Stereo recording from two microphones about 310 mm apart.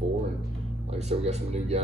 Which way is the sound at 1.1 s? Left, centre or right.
Centre.